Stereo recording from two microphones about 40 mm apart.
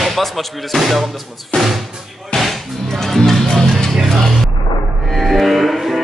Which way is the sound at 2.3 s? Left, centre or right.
Centre.